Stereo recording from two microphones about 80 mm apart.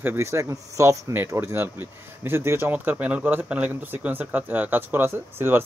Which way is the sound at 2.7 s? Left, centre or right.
Right.